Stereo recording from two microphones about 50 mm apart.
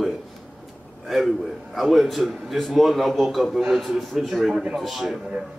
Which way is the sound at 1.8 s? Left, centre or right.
Centre.